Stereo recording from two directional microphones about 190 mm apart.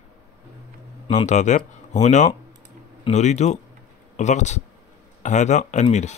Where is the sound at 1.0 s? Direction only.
40° left (ahead or behind).